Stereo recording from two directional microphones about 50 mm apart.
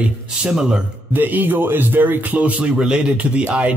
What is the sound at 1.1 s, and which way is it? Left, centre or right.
A man's voice, right.